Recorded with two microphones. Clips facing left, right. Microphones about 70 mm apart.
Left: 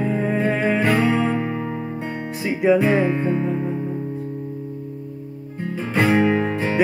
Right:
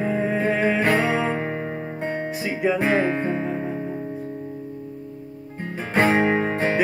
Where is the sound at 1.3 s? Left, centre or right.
Right.